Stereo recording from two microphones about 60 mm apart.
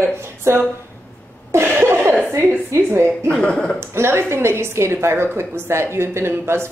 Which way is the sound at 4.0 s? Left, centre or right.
Right.